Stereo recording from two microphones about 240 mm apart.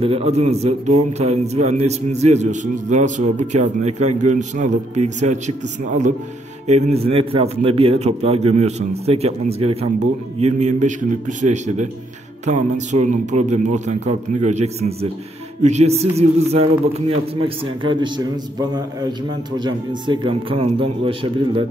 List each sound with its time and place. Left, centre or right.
0.0 s a man's voice: right
17.8 s a man's voice: centre